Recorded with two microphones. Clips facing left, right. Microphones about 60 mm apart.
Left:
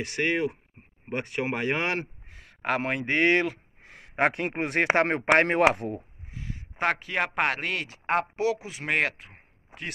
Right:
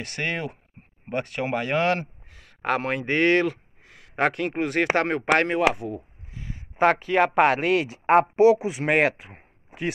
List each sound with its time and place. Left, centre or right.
0.0 s a man's voice: centre; by 2.5 s left
2.6 s a man's voice: centre
3.8 s a sound: left
4.2 s speech: left
5.5 s speech: left
6.3 s speech: centre
8.1 s a man's voice: right; by 9.9 s centre